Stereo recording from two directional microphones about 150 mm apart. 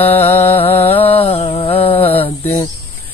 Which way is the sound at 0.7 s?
15° left (ahead or behind).